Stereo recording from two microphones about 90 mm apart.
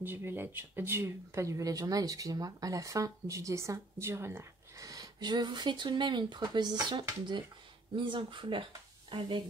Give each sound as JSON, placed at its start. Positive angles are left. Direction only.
{"t": 0.0, "sound": "speech", "side_deg": -25}
{"t": 4.8, "sound": "speech", "side_deg": -45}